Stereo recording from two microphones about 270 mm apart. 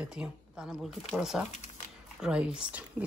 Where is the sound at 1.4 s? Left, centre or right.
Left.